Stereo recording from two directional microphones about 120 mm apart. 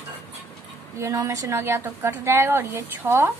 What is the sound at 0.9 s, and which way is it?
A woman's voice, 25° right (ahead or behind).